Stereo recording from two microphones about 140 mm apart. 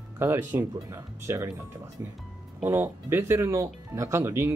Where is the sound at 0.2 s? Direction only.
15° right (ahead or behind).